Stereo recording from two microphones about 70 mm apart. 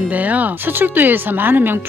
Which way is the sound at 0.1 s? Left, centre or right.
Right.